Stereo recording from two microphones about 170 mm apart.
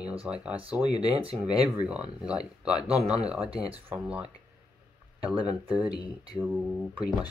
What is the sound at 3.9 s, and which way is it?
Speech, 5° right (ahead or behind).